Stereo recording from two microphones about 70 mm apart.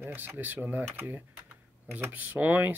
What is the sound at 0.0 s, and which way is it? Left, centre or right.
Speech, right.